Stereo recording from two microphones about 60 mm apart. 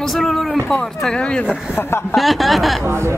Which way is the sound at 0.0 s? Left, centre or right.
Centre.